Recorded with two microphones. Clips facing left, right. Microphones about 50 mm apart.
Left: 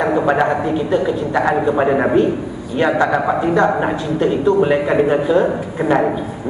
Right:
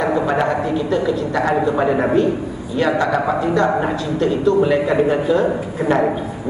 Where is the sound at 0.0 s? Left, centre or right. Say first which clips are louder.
Left 2 dB; centre.